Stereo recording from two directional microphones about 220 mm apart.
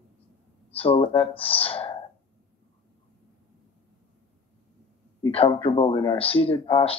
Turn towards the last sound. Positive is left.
turn(degrees=25)  # may be behind; listen again after turning